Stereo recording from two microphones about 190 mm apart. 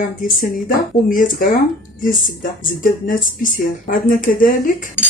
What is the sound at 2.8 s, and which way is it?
Speech, 45° left (ahead or behind).